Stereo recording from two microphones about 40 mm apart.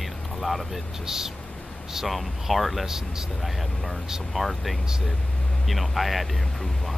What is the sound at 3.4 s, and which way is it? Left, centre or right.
Speech, centre.